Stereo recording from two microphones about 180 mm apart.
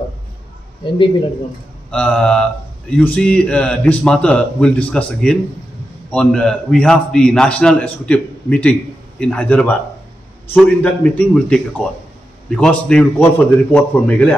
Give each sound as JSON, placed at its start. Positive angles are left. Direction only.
{"t": 0.8, "sound": "speech", "side_deg": 30}
{"t": 1.9, "sound": "a man's voice", "side_deg": 5}